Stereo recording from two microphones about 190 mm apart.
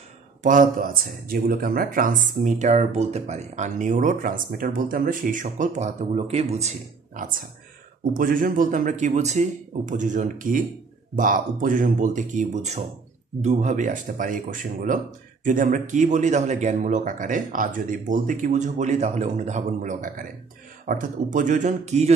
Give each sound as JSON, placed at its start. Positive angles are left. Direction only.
{"t": 0.4, "sound": "speech", "side_deg": -45}
{"t": 7.2, "sound": "speech", "side_deg": -50}